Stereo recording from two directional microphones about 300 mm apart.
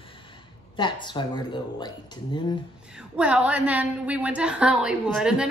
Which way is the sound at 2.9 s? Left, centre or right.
Centre.